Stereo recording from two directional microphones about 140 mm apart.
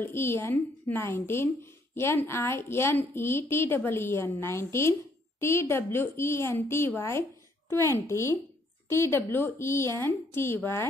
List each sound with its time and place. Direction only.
0.0 s a woman's voice: 15° left (ahead or behind)